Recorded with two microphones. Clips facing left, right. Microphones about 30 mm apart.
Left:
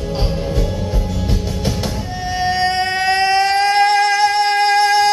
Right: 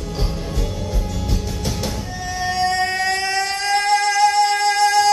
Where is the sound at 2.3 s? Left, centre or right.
Left.